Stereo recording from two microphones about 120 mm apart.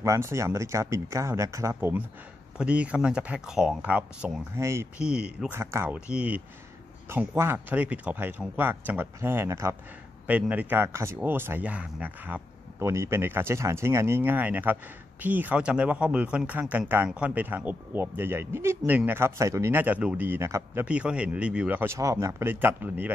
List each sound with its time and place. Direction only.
0.0 s speech: 25° right (ahead or behind)
2.5 s speech: 10° right (ahead or behind)
4.6 s speech: 25° right (ahead or behind)
4.9 s speech: 10° right (ahead or behind)
5.5 s speech: 20° right (ahead or behind)
5.9 s speech: 10° right (ahead or behind)
7.1 s speech: 20° right (ahead or behind)
10.2 s speech: 10° right (ahead or behind)
20.8 s speech: 10° right (ahead or behind)